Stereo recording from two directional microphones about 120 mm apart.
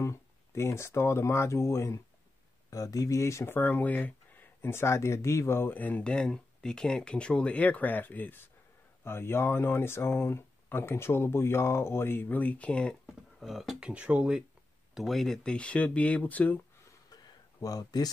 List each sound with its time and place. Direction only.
0.0 s speech: 25° left (ahead or behind)
13.0 s speech: centre (ahead or behind)
15.0 s speech: centre (ahead or behind)
17.1 s a sound: 30° left (ahead or behind)